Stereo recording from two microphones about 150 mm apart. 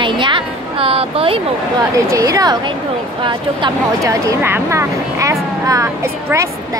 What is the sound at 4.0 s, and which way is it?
Speech, 20° right (ahead or behind).